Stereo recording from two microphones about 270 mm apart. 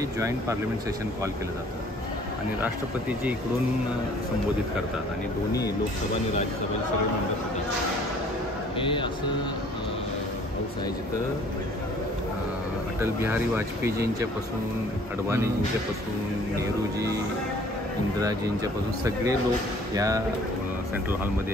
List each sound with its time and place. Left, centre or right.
2.6 s speech: centre
8.7 s speech: centre
13.0 s speech: centre
15.2 s speech: centre
18.2 s speech: centre